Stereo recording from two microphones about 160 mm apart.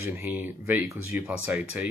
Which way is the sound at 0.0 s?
10° right (ahead or behind).